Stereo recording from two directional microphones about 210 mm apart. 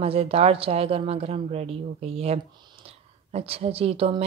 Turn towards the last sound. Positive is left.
turn(degrees=-25)  # may be behind; listen again after turning